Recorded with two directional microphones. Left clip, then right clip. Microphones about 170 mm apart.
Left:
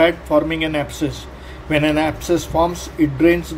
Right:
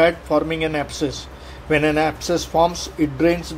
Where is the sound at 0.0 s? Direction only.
35° right (ahead or behind).